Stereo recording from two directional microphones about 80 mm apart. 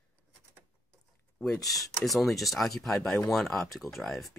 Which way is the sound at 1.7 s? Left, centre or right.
Centre.